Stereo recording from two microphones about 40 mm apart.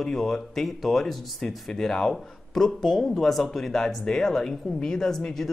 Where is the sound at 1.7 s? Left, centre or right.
Centre.